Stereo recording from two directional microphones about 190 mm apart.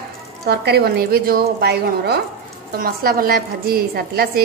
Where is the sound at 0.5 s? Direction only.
55° right (ahead or behind).